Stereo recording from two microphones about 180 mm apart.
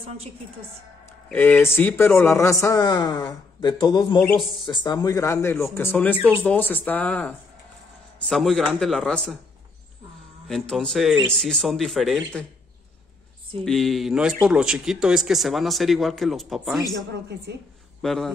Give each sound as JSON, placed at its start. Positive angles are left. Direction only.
{"t": 1.3, "sound": "a man's voice", "side_deg": 10}
{"t": 4.2, "sound": "speech", "side_deg": 5}
{"t": 4.8, "sound": "a man's voice", "side_deg": 20}
{"t": 10.5, "sound": "speech", "side_deg": 5}
{"t": 13.7, "sound": "speech", "side_deg": 0}
{"t": 18.0, "sound": "speech", "side_deg": 0}